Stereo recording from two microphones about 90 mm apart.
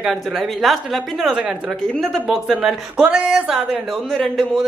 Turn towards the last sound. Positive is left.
turn(degrees=0)  # may be behind; listen again after turning